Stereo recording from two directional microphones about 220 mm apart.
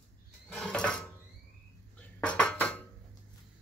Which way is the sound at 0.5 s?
5° left (ahead or behind).